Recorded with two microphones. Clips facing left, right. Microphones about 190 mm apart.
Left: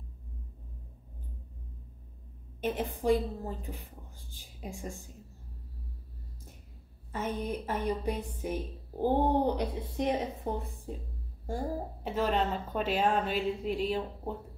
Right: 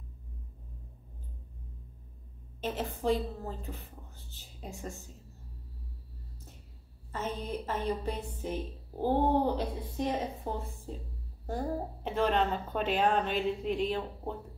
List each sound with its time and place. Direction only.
2.6 s a woman's voice: 15° left (ahead or behind)
7.1 s a woman's voice: 15° left (ahead or behind)
11.4 s a woman's voice: 10° left (ahead or behind)